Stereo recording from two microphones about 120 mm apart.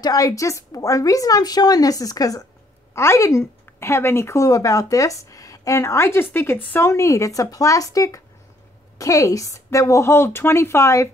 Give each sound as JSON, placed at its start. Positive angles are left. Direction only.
{"t": 0.0, "sound": "speech", "side_deg": 30}